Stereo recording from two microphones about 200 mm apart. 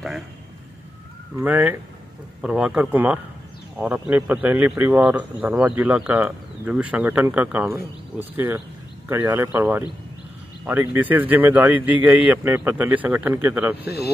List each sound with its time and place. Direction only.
1.3 s speech: 10° right (ahead or behind)
13.8 s speech: 50° left (ahead or behind)